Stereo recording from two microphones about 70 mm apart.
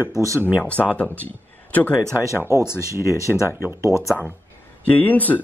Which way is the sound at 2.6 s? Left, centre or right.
Left.